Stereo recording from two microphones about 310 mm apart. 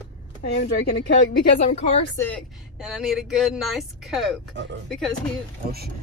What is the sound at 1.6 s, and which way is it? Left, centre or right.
Speech, left.